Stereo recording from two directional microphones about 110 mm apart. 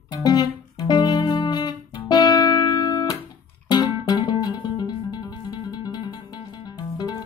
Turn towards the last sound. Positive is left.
turn(degrees=40)  # may be behind; listen again after turning